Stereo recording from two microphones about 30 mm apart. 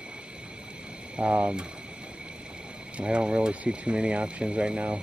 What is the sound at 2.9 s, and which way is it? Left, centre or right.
Speech, right.